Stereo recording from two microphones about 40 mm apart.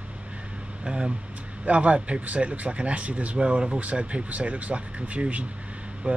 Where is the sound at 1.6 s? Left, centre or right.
Right.